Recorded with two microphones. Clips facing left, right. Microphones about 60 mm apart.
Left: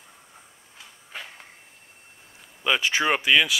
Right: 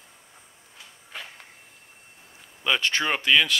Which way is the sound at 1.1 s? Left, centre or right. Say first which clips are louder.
Left 1 dB; centre.